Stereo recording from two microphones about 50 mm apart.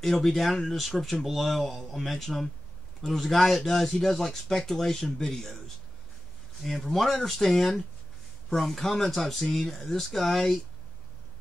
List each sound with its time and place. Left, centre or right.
0.0 s speech: centre
6.6 s speech: centre